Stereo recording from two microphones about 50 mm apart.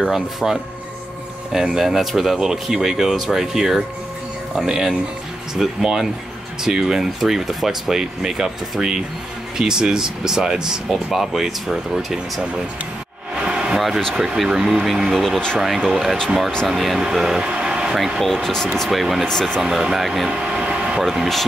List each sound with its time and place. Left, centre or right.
0.1 s speech: centre
13.4 s a sound: centre
13.7 s speech: centre
19.2 s speech: centre
19.6 s speech: centre
20.2 s air conditioning: centre
21.0 s speech: centre